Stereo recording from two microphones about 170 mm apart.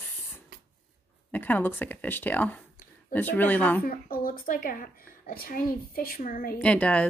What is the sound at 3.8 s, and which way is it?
A woman's voice, 60° left (ahead or behind).